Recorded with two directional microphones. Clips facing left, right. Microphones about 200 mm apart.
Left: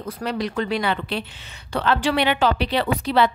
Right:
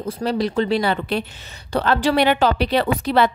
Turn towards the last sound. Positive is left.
turn(degrees=-50)  # may be behind; listen again after turning